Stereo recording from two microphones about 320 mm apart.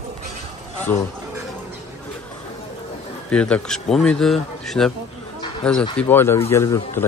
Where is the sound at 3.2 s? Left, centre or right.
Centre.